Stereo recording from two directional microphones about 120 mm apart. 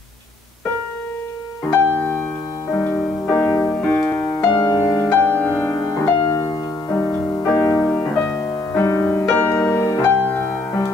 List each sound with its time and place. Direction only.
1.7 s music: 15° left (ahead or behind)
5.8 s music: 30° left (ahead or behind)